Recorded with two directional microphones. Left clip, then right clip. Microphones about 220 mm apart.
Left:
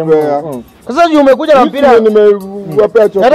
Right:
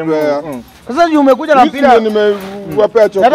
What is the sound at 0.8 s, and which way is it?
A man's voice, 55° left (ahead or behind).